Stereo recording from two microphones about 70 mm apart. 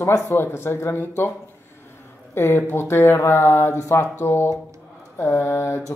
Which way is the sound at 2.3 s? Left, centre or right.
Left.